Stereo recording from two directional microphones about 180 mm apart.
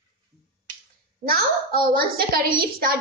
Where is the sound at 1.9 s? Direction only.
55° right (ahead or behind).